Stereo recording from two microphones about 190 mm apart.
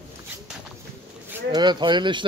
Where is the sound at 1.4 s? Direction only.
25° right (ahead or behind).